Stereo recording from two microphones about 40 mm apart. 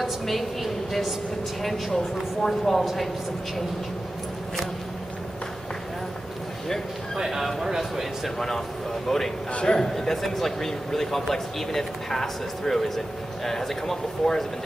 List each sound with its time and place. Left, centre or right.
0.0 s a woman's voice: centre
7.2 s speech: centre
8.4 s speech: centre
9.5 s a man's voice: left
9.8 s speech: centre